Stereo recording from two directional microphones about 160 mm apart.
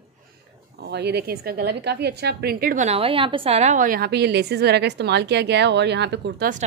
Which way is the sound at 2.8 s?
35° right (ahead or behind).